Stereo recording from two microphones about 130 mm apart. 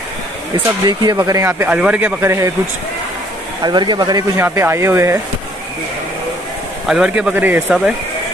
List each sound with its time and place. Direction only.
0.8 s speech: 30° right (ahead or behind); by 2.1 s 10° right (ahead or behind)
2.2 s speech: 20° right (ahead or behind)
3.6 s speech: 35° right (ahead or behind)
4.4 s speech: 20° right (ahead or behind)
6.9 s speech: 5° right (ahead or behind)